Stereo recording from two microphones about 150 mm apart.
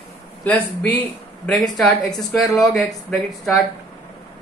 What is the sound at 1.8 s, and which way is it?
Speech, centre (ahead or behind).